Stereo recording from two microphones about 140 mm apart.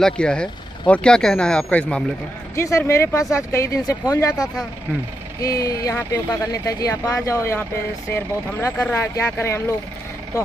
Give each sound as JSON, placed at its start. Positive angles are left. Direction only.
{"t": 0.0, "sound": "speech", "side_deg": 5}
{"t": 2.5, "sound": "speech", "side_deg": 20}